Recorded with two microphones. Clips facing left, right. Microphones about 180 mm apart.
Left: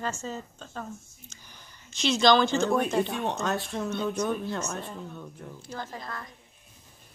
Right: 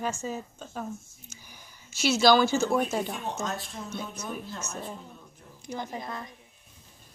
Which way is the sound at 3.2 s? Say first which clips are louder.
Left 4 dB; 65° left (ahead or behind).